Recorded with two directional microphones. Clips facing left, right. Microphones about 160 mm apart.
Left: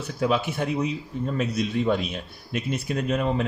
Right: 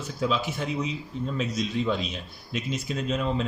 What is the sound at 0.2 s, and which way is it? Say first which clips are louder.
A man's voice: left 3 dB; 60° left (ahead or behind).